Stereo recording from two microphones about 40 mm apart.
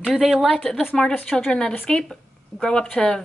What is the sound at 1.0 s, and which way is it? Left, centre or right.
Speech, centre.